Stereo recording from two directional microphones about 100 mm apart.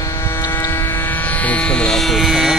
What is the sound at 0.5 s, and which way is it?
Vehicle, 20° left (ahead or behind).